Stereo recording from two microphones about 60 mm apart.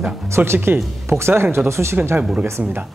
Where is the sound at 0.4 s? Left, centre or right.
Right.